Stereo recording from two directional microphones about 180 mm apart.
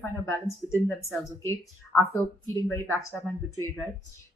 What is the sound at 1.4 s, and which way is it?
Speech, 15° left (ahead or behind).